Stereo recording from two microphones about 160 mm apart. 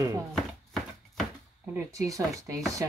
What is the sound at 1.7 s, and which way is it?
Speech, 20° right (ahead or behind).